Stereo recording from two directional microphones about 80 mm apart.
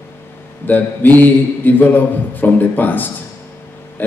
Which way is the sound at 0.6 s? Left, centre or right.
Left.